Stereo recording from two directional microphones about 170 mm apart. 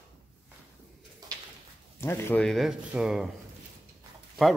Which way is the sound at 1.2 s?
20° right (ahead or behind).